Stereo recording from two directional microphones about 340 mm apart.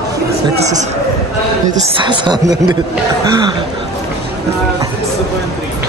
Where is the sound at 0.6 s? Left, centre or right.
Right.